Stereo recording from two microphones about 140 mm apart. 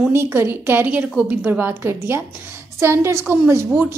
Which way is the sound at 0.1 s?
20° right (ahead or behind).